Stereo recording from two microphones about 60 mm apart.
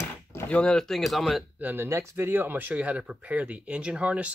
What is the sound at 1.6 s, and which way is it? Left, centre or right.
Speech, right.